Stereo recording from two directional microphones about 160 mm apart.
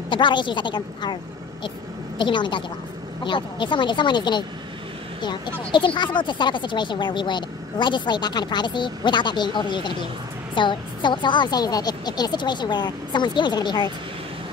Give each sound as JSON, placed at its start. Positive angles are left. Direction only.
{"t": 0.1, "sound": "speech", "side_deg": 30}
{"t": 2.1, "sound": "speech", "side_deg": 30}
{"t": 5.7, "sound": "speech", "side_deg": 30}